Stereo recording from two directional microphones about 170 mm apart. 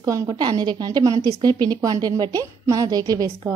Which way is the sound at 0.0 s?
20° right (ahead or behind).